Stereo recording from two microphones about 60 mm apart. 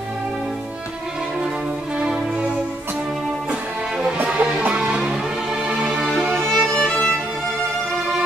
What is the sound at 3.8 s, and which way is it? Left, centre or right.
Music, centre.